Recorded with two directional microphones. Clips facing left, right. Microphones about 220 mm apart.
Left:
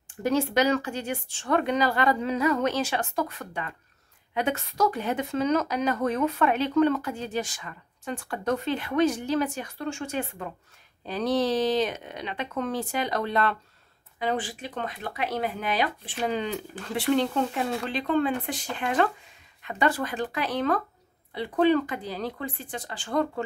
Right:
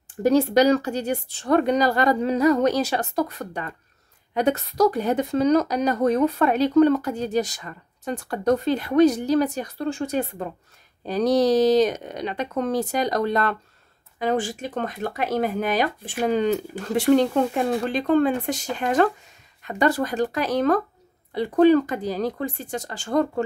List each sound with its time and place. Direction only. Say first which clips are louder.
0.2 s a woman's voice: right 6 dB; 35° right (ahead or behind)